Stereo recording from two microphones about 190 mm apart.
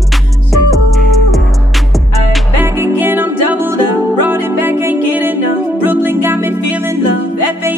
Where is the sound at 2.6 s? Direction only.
10° right (ahead or behind).